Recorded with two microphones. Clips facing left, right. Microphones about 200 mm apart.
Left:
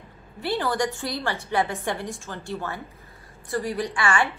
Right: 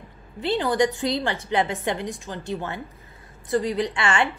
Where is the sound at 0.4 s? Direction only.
20° right (ahead or behind).